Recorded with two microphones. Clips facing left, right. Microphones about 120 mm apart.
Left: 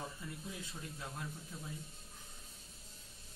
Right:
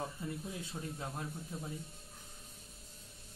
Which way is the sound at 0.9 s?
35° right (ahead or behind).